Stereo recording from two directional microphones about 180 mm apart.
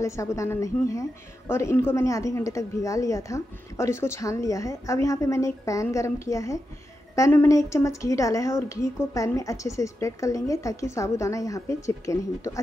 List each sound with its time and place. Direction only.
0.0 s a woman's voice: 15° left (ahead or behind)